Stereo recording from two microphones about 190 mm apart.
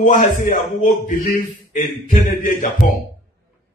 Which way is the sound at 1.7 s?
45° left (ahead or behind).